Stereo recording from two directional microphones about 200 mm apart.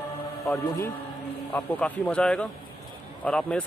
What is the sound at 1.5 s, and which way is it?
Speech, 5° left (ahead or behind).